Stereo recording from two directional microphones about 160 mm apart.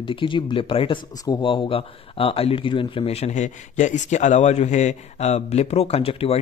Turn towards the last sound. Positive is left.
turn(degrees=40)  # may be behind; listen again after turning